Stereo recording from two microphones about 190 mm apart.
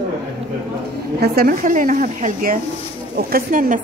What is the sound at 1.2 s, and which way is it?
A woman's voice, 50° right (ahead or behind).